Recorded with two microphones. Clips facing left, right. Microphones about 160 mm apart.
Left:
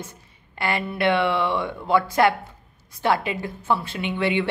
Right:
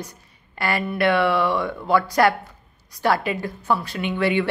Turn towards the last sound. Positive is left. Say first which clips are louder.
# right 2 dB
turn(degrees=20)  # may be behind; listen again after turning